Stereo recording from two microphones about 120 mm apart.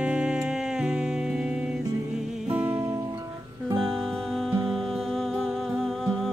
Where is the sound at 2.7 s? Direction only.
25° right (ahead or behind).